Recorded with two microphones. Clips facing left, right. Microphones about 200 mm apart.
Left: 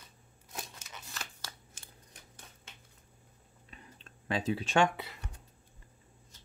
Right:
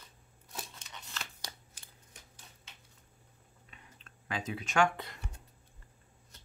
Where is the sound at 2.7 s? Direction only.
50° left (ahead or behind).